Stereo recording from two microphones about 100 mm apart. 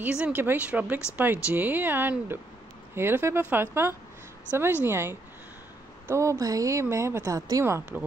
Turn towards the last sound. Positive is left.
turn(degrees=-30)  # may be behind; listen again after turning